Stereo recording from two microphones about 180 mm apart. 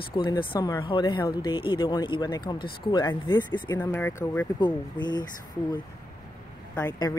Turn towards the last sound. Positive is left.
turn(degrees=15)  # may be behind; listen again after turning